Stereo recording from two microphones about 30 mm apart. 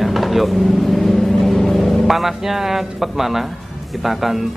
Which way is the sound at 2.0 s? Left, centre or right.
Centre.